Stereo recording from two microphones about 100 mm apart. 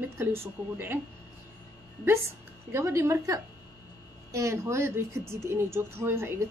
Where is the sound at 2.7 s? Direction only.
30° right (ahead or behind).